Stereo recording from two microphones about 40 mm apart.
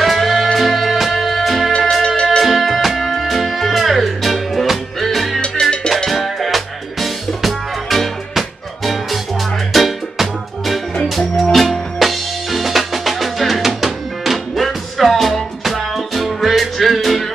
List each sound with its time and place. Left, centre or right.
0.0 s music: centre
5.4 s music: left
6.0 s music: centre